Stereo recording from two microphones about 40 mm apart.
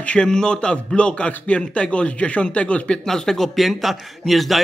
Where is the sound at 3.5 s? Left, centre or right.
Centre.